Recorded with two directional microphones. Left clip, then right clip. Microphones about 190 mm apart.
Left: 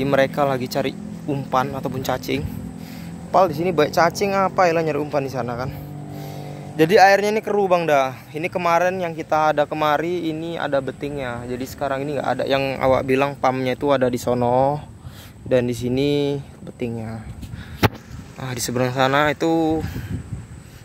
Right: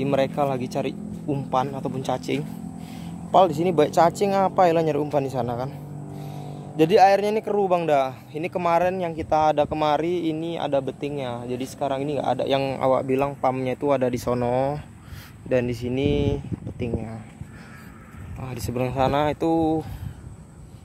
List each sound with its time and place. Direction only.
0.0 s speech: centre (ahead or behind)
3.3 s speech: 20° right (ahead or behind)
6.8 s speech: centre (ahead or behind)
18.4 s speech: 5° left (ahead or behind)